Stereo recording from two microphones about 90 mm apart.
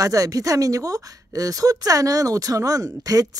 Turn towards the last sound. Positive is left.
turn(degrees=-40)  # may be behind; listen again after turning